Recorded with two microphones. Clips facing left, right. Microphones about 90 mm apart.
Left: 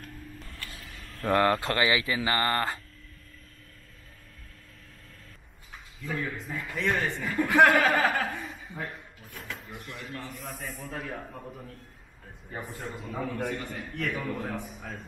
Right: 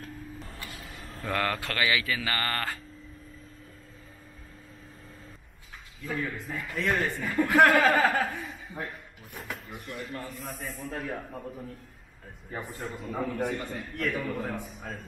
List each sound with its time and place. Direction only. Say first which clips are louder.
0.0 s vehicle: right 3 dB; centre (ahead or behind)
0.7 s vehicle: right 2 dB; 30° right (ahead or behind)
1.3 s speech: left 6 dB; 25° left (ahead or behind)
6.0 s a man's voice: even; centre (ahead or behind)